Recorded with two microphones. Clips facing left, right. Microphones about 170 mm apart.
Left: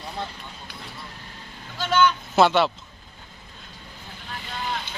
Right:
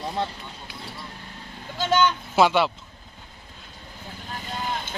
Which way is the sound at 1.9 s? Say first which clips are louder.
Left 1 dB; 15° right (ahead or behind).